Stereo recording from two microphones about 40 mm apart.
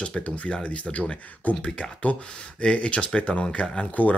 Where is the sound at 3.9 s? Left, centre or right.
Left.